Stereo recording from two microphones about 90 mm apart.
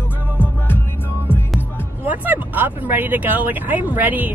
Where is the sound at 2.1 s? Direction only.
20° right (ahead or behind).